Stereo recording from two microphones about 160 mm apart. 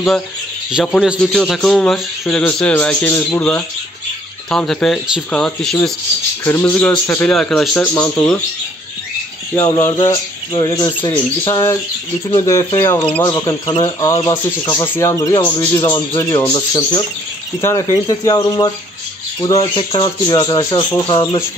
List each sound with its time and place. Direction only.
1.0 s speech: centre (ahead or behind)
9.6 s speech: 20° left (ahead or behind)
11.4 s speech: 20° left (ahead or behind)
13.2 s speech: 25° left (ahead or behind)